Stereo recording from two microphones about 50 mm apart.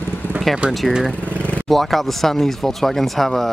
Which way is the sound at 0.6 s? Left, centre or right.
Right.